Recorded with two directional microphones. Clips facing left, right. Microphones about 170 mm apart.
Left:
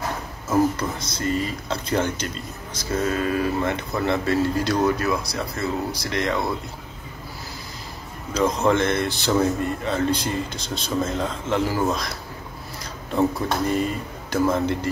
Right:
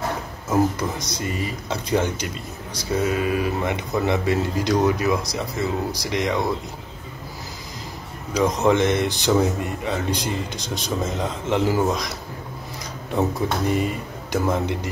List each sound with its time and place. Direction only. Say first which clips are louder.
0.5 s speech: even; 15° right (ahead or behind)
8.3 s speech: right 1 dB; 15° right (ahead or behind)
13.4 s speech: even; 15° right (ahead or behind)